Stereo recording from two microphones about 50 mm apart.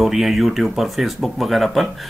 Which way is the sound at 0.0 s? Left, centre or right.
Centre.